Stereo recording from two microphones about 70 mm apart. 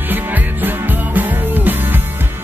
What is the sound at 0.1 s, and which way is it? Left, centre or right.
Music, right.